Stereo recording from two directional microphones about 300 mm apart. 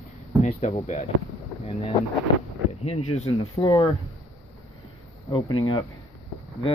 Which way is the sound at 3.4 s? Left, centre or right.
Centre.